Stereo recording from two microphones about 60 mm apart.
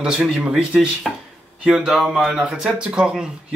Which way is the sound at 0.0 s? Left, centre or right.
Centre.